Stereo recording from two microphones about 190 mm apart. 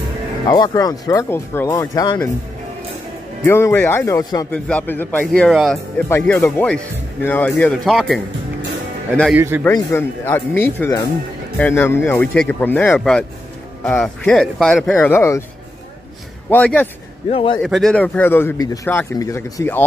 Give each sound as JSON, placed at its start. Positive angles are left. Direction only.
{"t": 0.5, "sound": "speech", "side_deg": 20}
{"t": 3.4, "sound": "a man's voice", "side_deg": 15}
{"t": 4.5, "sound": "a man's voice", "side_deg": 5}
{"t": 5.9, "sound": "a man's voice", "side_deg": 10}
{"t": 9.3, "sound": "a man's voice", "side_deg": -10}
{"t": 9.7, "sound": "a man's voice", "side_deg": 15}
{"t": 16.4, "sound": "a man's voice", "side_deg": 10}
{"t": 17.3, "sound": "speech", "side_deg": 30}
{"t": 17.6, "sound": "a man's voice", "side_deg": 0}